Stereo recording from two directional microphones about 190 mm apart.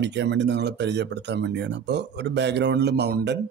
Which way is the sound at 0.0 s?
65° right (ahead or behind).